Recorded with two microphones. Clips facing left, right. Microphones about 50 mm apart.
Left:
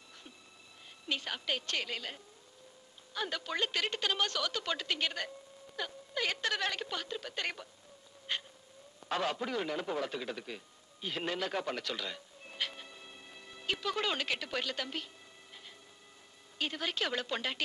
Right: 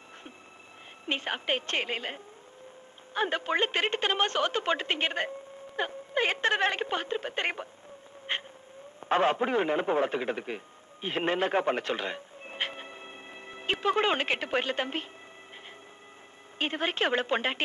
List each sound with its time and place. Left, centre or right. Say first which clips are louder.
1.0 s a woman's voice: right 6 dB; right
8.3 s a sound: right 5 dB; right
9.1 s a man's voice: right 9 dB; right
16.5 s a woman's voice: right 6 dB; right